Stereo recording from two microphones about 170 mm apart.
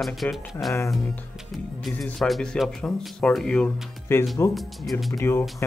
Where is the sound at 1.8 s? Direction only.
5° left (ahead or behind).